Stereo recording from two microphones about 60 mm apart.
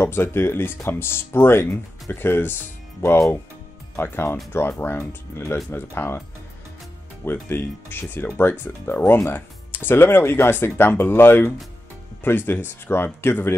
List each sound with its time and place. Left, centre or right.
0.0 s speech: left
7.2 s speech: left